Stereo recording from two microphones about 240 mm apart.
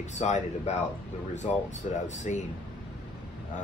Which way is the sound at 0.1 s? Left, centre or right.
Left.